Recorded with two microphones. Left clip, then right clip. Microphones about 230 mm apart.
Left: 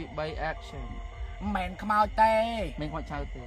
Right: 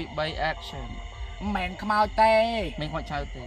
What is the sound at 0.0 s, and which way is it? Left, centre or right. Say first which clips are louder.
Speech: right 5 dB; right.